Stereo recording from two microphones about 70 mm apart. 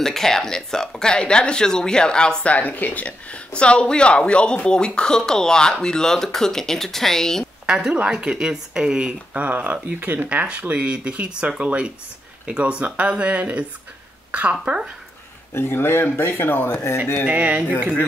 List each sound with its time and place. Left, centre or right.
0.0 s speech: centre
7.6 s speech: centre
15.5 s speech: left
17.3 s speech: right